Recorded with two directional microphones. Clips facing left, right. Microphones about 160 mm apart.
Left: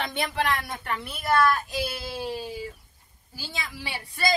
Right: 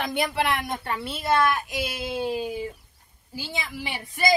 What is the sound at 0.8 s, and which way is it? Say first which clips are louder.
Speech: right 1 dB; 30° right (ahead or behind).